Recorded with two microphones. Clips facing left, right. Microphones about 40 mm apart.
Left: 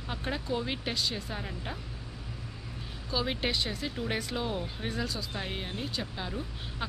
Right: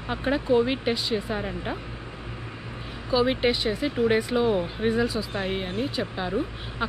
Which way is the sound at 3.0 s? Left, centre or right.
Centre.